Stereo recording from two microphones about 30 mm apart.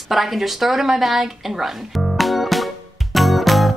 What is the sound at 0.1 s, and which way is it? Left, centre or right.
Speech, centre.